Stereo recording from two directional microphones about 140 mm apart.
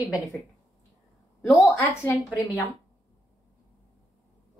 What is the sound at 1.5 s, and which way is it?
Speech, 15° left (ahead or behind).